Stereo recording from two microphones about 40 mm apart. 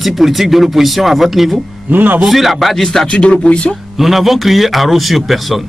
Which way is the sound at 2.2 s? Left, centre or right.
Centre.